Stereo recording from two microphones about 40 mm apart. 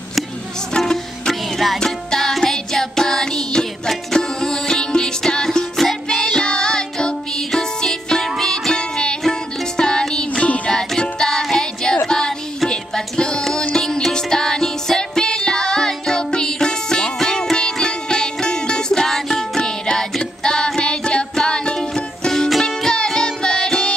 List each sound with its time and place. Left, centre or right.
0.7 s music: centre
5.8 s music: centre
6.2 s music: centre
8.7 s music: left
10.3 s music: left
10.7 s music: centre
11.5 s child singing: centre
12.6 s music: centre